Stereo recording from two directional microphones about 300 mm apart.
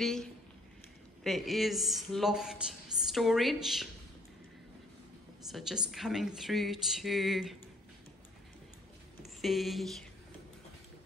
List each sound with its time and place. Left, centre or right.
0.0 s a woman's voice: centre
5.5 s speech: centre
9.2 s speech: centre